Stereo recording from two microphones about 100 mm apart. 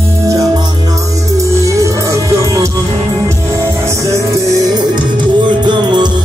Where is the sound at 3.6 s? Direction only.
30° right (ahead or behind).